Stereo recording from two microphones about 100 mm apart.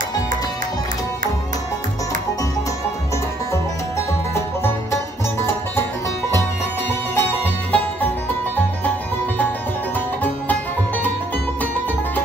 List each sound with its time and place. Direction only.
7.2 s music: 20° left (ahead or behind)
9.9 s music: 15° left (ahead or behind)